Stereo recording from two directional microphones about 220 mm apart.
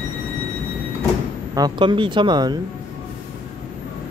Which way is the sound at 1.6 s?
20° right (ahead or behind).